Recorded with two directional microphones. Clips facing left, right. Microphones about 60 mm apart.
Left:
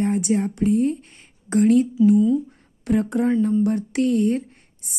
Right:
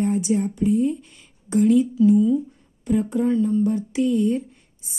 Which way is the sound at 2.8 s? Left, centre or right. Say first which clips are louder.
Left 1 dB; left.